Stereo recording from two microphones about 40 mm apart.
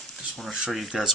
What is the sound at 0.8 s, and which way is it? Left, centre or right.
Speech, centre.